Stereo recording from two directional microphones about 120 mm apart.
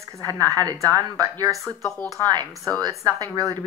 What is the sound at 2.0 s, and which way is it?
Speech, 30° right (ahead or behind).